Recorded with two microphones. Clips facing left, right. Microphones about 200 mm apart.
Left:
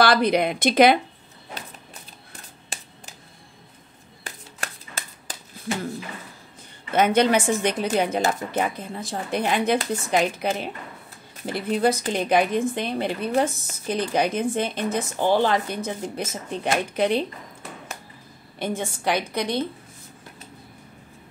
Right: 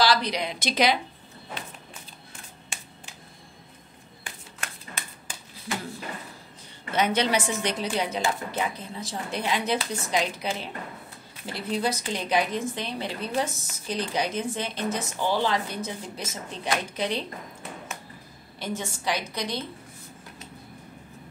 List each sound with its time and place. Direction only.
0.0 s a woman's voice: 55° left (ahead or behind)
2.7 s a sound: 35° left (ahead or behind)
6.9 s a woman's voice: 50° left (ahead or behind)
18.6 s a woman's voice: 55° left (ahead or behind)